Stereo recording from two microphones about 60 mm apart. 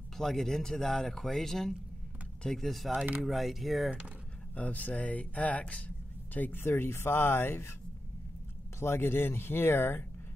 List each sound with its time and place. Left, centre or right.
0.2 s speech: centre
4.6 s speech: left
6.6 s speech: left
8.7 s speech: left